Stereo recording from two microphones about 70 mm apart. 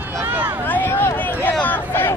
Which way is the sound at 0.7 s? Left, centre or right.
Left.